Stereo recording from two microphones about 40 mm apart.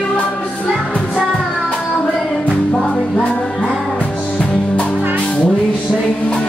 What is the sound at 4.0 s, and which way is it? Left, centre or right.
Music, left.